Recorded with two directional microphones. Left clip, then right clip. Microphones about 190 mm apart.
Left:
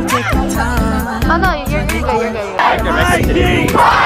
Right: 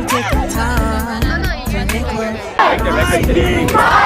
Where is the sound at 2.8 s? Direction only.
Centre (ahead or behind).